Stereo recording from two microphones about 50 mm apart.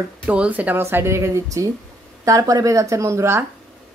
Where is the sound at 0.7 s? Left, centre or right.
Right.